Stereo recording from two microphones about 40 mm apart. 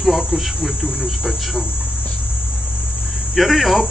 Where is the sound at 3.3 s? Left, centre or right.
Centre.